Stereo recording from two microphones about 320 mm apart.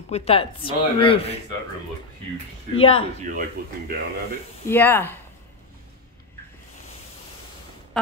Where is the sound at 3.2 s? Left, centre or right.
Right.